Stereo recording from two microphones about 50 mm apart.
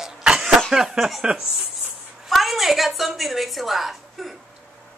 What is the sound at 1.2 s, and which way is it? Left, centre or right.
Speech, centre.